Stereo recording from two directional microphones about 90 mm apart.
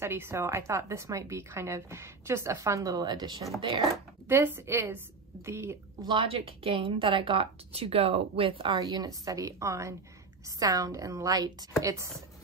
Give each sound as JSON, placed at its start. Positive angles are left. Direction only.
{"t": 0.0, "sound": "a woman's voice", "side_deg": -30}
{"t": 4.3, "sound": "a woman's voice", "side_deg": -25}
{"t": 6.0, "sound": "a woman's voice", "side_deg": -80}
{"t": 8.7, "sound": "a woman's voice", "side_deg": -45}